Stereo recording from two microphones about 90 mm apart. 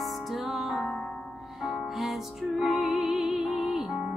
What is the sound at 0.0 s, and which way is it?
Music, centre (ahead or behind).